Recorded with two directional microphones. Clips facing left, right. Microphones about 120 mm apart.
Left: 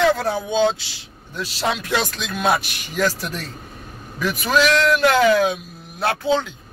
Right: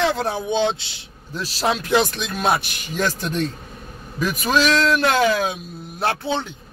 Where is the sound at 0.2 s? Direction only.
25° right (ahead or behind).